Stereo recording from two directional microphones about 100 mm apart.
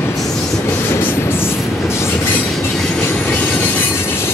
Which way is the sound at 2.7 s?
10° left (ahead or behind).